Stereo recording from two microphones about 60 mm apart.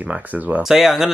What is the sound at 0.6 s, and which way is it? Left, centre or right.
Speech, centre.